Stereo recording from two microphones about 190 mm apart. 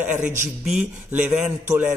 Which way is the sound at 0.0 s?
10° right (ahead or behind).